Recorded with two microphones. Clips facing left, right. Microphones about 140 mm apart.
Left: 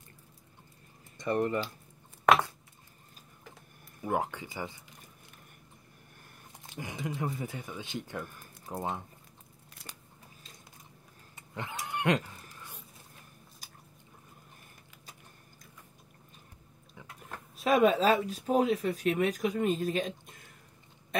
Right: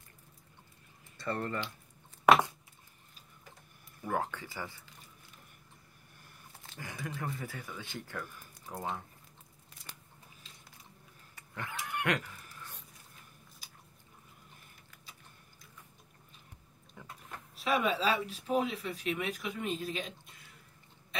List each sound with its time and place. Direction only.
1.1 s speech: 15° left (ahead or behind)
4.0 s speech: 15° left (ahead or behind)
6.7 s speech: 20° left (ahead or behind)
11.3 s vehicle: 20° left (ahead or behind)
11.8 s a sound: 25° left (ahead or behind)
12.4 s a sound: 10° left (ahead or behind)
17.6 s speech: 45° left (ahead or behind)
21.1 s pig: 50° left (ahead or behind)